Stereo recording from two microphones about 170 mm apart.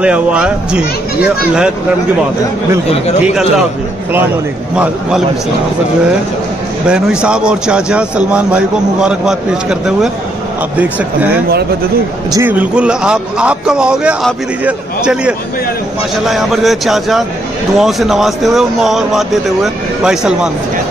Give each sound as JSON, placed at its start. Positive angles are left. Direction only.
{"t": 0.0, "sound": "a man's voice", "side_deg": -5}
{"t": 6.9, "sound": "a man's voice", "side_deg": -5}